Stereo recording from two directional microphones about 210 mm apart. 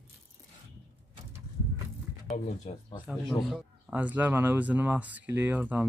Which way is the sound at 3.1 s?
Centre (ahead or behind).